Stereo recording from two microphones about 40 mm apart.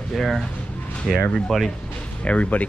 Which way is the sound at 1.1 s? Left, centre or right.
Centre.